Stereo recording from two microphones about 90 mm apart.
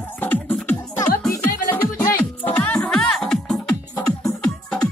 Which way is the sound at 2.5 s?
15° left (ahead or behind).